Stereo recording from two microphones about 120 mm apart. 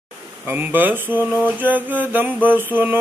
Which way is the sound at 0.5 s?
15° right (ahead or behind).